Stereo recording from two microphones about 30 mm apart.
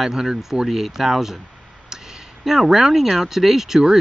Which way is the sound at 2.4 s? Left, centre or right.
Centre.